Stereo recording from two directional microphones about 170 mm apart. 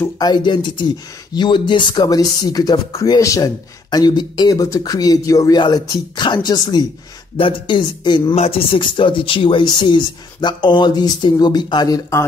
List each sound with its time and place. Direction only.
0.0 s speech: 25° left (ahead or behind)